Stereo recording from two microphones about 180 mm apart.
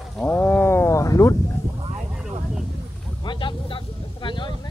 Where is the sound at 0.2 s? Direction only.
10° left (ahead or behind).